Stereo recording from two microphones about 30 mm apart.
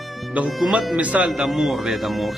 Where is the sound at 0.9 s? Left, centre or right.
Right.